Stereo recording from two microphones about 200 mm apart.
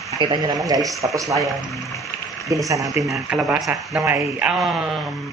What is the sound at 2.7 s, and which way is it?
Speech, 15° right (ahead or behind).